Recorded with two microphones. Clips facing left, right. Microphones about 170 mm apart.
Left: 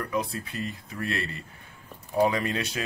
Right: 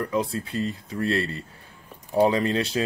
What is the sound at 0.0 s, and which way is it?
Speech, 30° right (ahead or behind).